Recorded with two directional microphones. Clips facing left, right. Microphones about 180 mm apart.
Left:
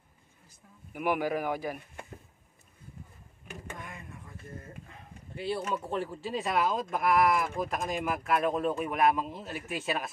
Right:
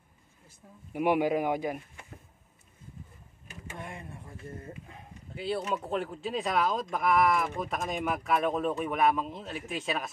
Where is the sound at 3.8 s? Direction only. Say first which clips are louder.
Right 3 dB; 30° right (ahead or behind).